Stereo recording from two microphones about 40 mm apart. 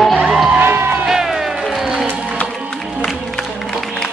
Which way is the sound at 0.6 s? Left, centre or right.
Right.